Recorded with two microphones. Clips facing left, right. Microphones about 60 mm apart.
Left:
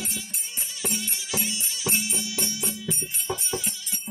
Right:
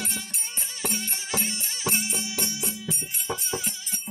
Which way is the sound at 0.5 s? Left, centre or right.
Right.